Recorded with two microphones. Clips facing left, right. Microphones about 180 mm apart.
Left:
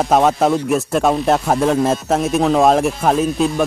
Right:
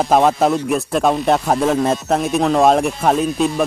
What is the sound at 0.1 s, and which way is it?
Speech, centre (ahead or behind).